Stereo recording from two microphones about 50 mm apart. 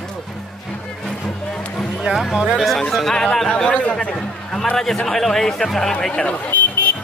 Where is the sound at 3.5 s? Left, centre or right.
Left.